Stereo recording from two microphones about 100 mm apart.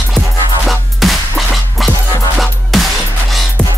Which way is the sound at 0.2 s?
20° right (ahead or behind).